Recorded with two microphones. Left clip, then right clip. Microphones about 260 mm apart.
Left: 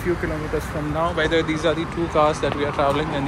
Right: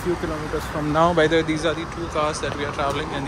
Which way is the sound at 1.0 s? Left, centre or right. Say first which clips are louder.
Right 5 dB; right.